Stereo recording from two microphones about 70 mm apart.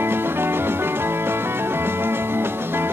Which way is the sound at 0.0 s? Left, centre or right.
Right.